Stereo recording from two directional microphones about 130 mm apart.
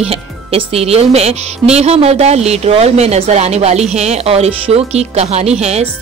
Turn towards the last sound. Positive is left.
turn(degrees=-55)  # may be behind; listen again after turning